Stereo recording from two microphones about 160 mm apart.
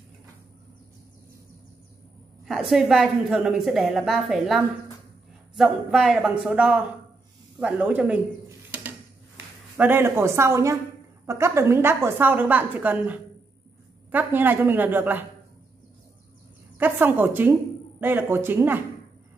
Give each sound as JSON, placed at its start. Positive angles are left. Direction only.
{"t": 2.4, "sound": "a woman's voice", "side_deg": 0}
{"t": 9.8, "sound": "a woman's voice", "side_deg": -15}
{"t": 16.7, "sound": "a woman's voice", "side_deg": -10}